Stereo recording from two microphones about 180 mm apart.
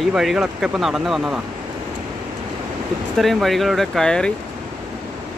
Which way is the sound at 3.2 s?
Centre (ahead or behind).